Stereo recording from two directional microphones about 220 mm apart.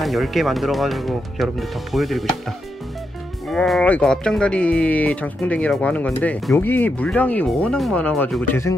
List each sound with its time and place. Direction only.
0.0 s speech: centre (ahead or behind)
3.4 s speech: centre (ahead or behind)